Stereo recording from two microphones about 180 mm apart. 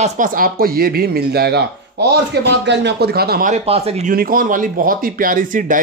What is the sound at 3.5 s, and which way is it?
Speech, 35° right (ahead or behind).